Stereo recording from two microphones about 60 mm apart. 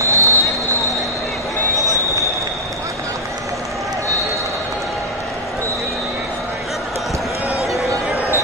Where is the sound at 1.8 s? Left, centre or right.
Left.